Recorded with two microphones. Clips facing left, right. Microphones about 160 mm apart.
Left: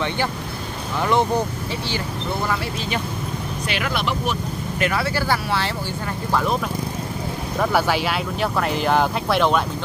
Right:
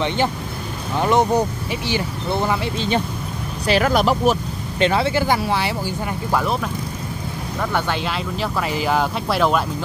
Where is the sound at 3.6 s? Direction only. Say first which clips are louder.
Right 9 dB; 40° right (ahead or behind).